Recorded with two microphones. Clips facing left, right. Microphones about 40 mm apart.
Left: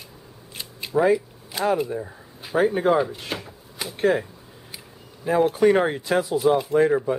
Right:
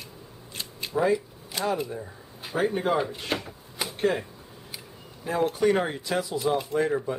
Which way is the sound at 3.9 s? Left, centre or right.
Centre.